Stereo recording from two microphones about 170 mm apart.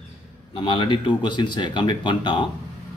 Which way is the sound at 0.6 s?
30° left (ahead or behind).